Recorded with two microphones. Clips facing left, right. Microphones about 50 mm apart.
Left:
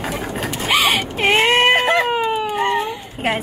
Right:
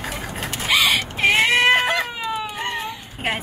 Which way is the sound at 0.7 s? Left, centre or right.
Left.